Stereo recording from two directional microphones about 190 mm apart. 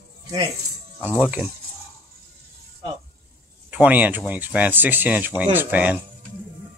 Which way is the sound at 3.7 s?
10° right (ahead or behind).